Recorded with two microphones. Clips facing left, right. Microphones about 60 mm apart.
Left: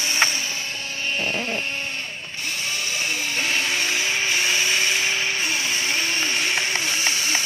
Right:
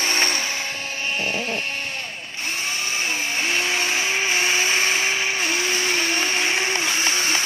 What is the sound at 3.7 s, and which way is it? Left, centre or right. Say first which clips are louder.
Vacuum cleaner: right 1 dB; right.